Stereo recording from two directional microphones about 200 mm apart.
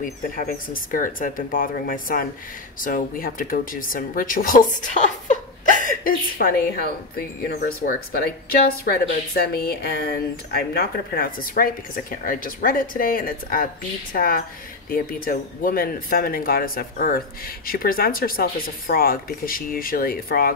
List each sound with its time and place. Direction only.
0.0 s a woman's voice: 45° left (ahead or behind)